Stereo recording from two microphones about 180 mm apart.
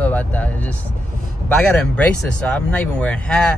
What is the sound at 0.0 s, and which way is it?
Speech, 10° left (ahead or behind).